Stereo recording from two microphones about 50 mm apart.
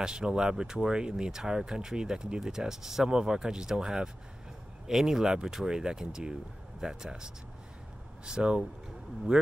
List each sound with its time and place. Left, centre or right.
0.0 s speech: centre
8.3 s speech: centre